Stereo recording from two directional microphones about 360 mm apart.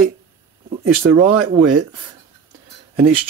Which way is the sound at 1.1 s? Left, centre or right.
Centre.